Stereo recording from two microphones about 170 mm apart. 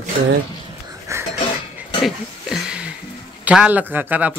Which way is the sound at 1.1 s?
15° right (ahead or behind).